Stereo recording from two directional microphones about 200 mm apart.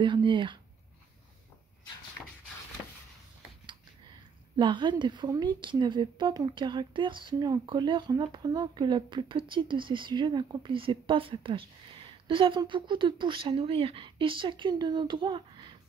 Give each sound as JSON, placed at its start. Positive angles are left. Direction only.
{"t": 0.0, "sound": "a woman's voice", "side_deg": -25}
{"t": 4.6, "sound": "a woman's voice", "side_deg": -25}